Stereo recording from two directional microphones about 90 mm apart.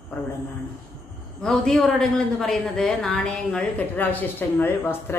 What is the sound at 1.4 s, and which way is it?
Speech, 10° left (ahead or behind).